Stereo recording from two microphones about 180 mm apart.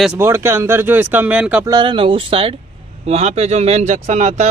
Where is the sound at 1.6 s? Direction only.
25° right (ahead or behind).